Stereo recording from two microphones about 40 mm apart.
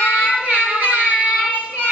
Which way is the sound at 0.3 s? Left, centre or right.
Right.